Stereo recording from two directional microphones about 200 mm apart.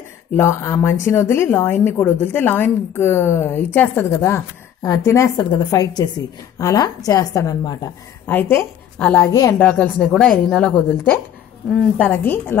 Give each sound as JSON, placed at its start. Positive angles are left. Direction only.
{"t": 0.4, "sound": "speech", "side_deg": 15}
{"t": 9.7, "sound": "speech", "side_deg": 5}